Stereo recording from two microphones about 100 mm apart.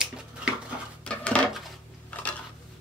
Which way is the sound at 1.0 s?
10° left (ahead or behind).